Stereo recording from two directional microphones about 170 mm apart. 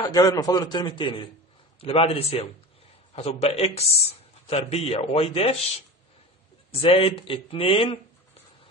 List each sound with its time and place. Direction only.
0.0 s a man's voice: 20° left (ahead or behind)